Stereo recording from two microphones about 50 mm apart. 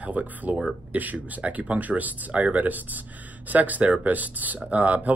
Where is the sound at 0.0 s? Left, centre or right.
Right.